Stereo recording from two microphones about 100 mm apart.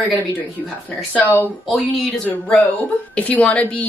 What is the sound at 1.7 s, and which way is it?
Speech, 5° left (ahead or behind).